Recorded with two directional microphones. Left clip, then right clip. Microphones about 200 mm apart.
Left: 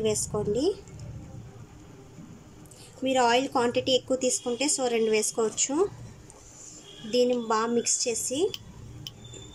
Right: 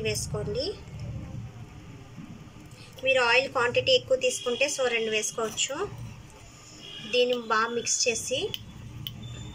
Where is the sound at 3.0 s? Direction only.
30° left (ahead or behind).